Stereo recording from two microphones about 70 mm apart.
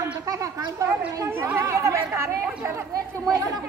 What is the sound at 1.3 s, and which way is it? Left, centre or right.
Speech, right.